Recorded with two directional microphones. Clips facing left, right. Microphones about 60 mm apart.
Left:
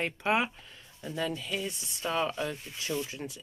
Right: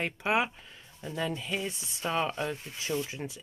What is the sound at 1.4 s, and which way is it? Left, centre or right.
Speech, right.